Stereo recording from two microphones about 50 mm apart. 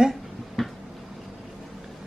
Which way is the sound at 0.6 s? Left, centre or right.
Centre.